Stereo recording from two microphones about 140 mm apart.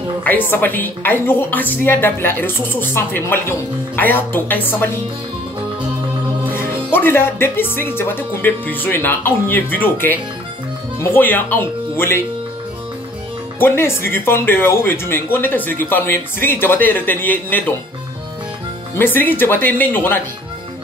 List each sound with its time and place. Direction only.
0.2 s a woman's voice: 15° left (ahead or behind)
6.5 s a woman's voice: 15° left (ahead or behind)
13.6 s a woman's voice: 15° left (ahead or behind)
18.9 s a woman's voice: 15° left (ahead or behind)